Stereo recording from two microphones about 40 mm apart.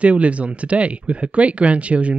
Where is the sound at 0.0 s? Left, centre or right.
Right.